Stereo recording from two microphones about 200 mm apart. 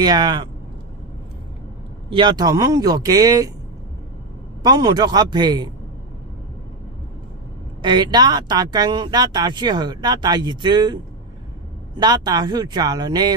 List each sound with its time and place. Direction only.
0.0 s speech: 20° right (ahead or behind)
2.0 s speech: 25° right (ahead or behind)
4.6 s speech: 20° right (ahead or behind)
7.8 s speech: 20° right (ahead or behind)
12.0 s speech: 20° right (ahead or behind)